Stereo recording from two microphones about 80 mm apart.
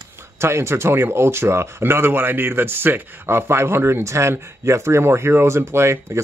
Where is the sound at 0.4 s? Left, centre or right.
Right.